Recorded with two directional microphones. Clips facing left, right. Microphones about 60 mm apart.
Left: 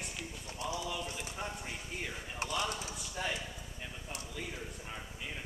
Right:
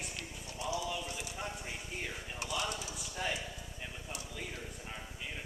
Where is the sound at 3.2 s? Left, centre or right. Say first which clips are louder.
Even; centre.